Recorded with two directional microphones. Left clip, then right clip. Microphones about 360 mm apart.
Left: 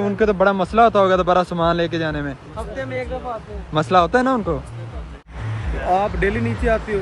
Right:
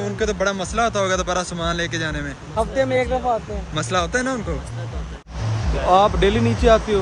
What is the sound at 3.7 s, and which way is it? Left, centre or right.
Speech, centre.